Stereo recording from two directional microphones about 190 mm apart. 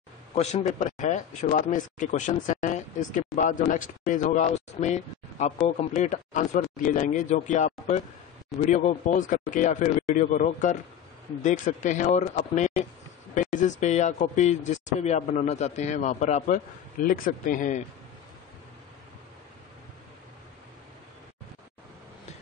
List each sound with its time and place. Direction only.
0.3 s speech: 35° left (ahead or behind)